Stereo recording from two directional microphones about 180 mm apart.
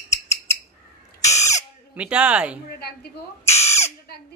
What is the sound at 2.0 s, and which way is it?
Speech, 5° right (ahead or behind).